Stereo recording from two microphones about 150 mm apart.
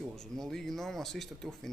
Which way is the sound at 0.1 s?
5° left (ahead or behind).